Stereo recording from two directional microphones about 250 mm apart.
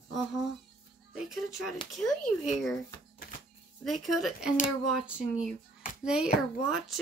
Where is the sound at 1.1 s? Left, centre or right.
Centre.